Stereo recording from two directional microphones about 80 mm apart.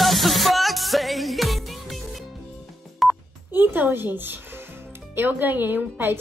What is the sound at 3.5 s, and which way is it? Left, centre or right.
A woman's voice, right.